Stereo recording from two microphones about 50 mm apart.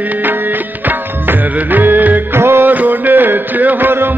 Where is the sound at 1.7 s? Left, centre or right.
Right.